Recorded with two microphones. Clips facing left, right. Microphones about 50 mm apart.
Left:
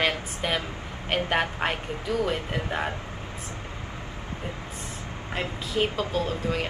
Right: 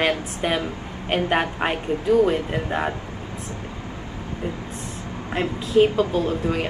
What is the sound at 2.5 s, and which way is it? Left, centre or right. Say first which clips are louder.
Speech: right 4 dB; centre.